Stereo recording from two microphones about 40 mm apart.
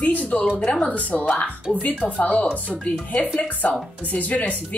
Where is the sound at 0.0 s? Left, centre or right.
Left.